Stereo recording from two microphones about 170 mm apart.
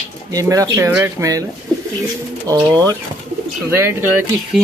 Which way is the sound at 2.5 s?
20° right (ahead or behind).